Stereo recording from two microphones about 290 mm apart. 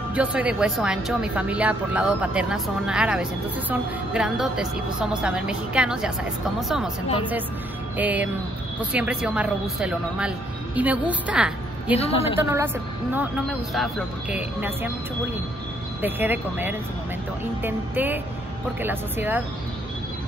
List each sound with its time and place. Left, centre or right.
0.1 s speech: centre
8.0 s speech: centre
12.0 s a woman's voice: left
12.4 s a woman's voice: centre
16.0 s a woman's voice: centre